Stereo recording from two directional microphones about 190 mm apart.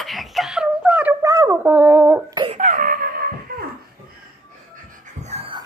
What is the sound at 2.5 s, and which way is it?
Wail, 45° right (ahead or behind).